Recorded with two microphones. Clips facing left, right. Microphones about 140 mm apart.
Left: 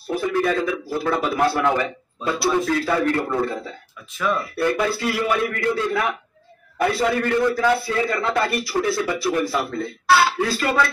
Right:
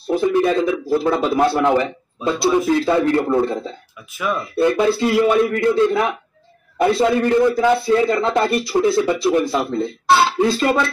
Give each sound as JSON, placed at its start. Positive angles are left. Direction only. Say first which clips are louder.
{"t": 0.0, "sound": "a man's voice", "louder": "right 5 dB", "side_deg": -20}